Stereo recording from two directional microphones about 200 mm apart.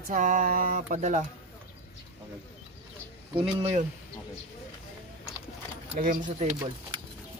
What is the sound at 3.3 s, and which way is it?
Speech, 25° right (ahead or behind).